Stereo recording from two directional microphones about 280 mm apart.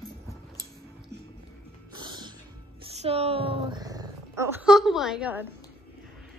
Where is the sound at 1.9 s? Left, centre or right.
Centre.